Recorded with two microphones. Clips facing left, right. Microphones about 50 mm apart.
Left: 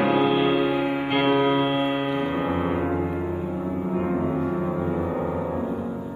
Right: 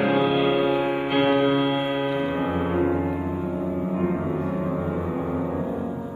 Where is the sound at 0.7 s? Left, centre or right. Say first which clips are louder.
Right 1 dB; right.